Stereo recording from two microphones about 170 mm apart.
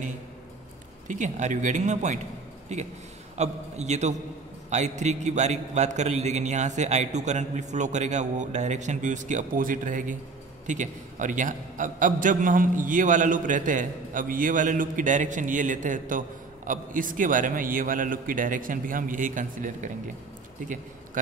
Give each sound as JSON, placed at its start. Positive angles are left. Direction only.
{"t": 1.0, "sound": "a man's voice", "side_deg": -45}
{"t": 3.3, "sound": "a man's voice", "side_deg": -40}